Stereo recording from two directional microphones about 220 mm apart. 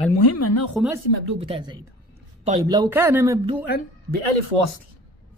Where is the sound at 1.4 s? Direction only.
20° right (ahead or behind).